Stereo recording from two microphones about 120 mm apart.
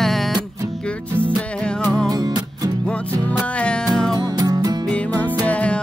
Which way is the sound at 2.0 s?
30° right (ahead or behind).